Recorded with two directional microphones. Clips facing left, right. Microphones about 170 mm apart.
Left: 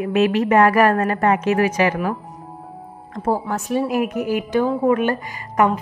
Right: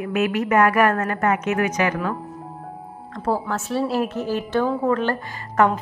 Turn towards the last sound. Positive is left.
turn(degrees=10)  # may be behind; listen again after turning